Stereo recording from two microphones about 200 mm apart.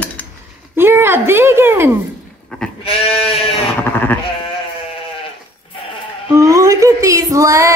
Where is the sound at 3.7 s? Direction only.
10° left (ahead or behind).